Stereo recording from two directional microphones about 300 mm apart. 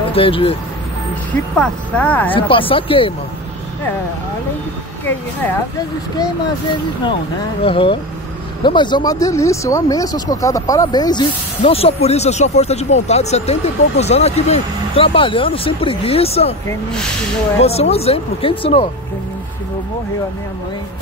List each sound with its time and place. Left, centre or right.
0.1 s speech: centre
1.3 s speech: centre
2.3 s speech: centre
7.6 s speech: centre
17.6 s speech: left